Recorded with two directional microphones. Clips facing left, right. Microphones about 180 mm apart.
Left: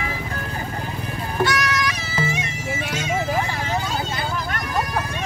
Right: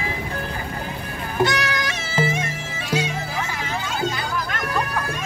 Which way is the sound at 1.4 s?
25° right (ahead or behind).